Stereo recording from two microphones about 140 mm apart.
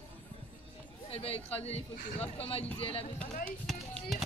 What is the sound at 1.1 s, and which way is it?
A man's voice, 45° left (ahead or behind).